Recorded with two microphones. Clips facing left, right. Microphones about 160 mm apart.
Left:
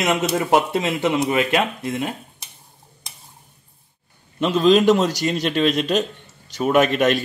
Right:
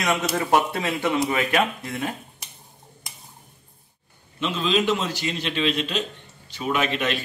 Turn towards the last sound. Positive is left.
turn(degrees=45)  # may be behind; listen again after turning